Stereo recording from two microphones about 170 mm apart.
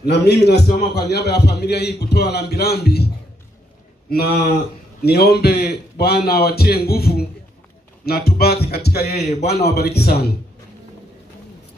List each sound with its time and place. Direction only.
0.0 s a man's voice: 75° left (ahead or behind)
4.1 s a man's voice: 65° left (ahead or behind)